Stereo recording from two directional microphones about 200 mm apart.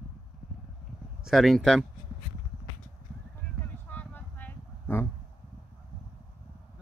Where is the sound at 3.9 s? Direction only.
10° left (ahead or behind).